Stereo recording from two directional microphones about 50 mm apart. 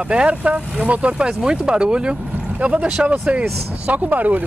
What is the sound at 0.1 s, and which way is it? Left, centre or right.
Speech, right.